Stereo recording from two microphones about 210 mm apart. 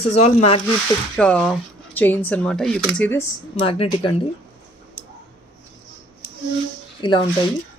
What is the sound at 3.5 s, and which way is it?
Speech, 25° left (ahead or behind).